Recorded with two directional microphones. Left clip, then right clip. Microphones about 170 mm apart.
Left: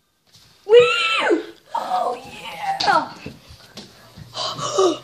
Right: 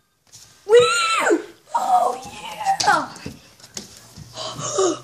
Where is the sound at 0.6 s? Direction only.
15° right (ahead or behind).